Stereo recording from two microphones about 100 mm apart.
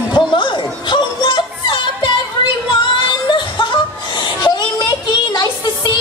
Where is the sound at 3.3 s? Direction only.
50° left (ahead or behind).